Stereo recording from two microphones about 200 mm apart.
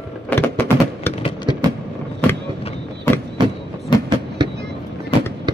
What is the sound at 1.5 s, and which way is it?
Vehicle, 25° right (ahead or behind).